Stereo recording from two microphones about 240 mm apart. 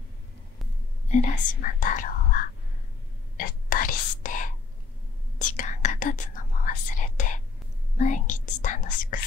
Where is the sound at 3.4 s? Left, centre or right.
Left.